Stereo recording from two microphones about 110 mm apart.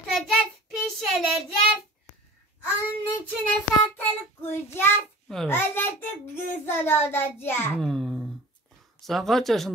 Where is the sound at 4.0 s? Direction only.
20° left (ahead or behind).